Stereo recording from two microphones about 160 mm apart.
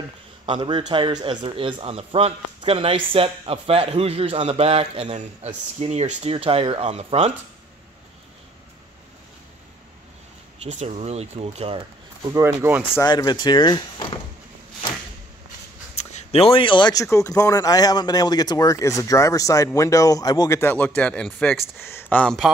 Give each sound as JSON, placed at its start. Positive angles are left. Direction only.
{"t": 0.5, "sound": "a man's voice", "side_deg": -30}
{"t": 10.6, "sound": "a man's voice", "side_deg": -45}
{"t": 12.3, "sound": "speech", "side_deg": -15}
{"t": 13.0, "sound": "speech", "side_deg": 25}
{"t": 16.0, "sound": "speech", "side_deg": 45}
{"t": 20.7, "sound": "speech", "side_deg": 10}